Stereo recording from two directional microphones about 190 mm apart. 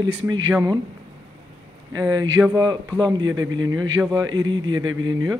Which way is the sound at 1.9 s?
20° right (ahead or behind).